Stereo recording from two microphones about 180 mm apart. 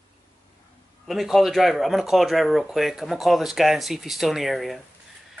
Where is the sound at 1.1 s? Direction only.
Centre (ahead or behind).